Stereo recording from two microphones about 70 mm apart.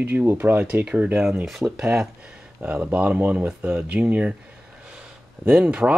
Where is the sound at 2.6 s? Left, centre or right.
Right.